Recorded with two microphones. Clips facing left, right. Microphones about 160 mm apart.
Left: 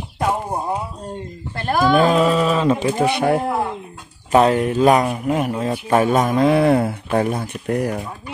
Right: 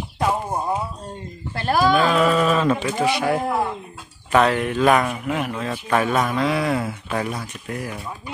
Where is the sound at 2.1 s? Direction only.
25° left (ahead or behind).